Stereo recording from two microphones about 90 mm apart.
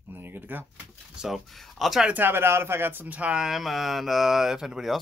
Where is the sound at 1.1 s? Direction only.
5° right (ahead or behind).